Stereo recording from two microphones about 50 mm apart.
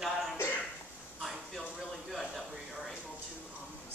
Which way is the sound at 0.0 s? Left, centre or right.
Centre.